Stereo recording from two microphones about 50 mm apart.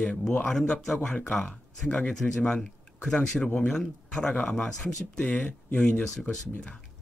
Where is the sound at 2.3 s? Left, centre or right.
Centre.